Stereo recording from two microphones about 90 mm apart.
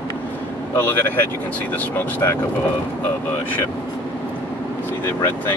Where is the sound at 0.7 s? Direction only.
25° left (ahead or behind).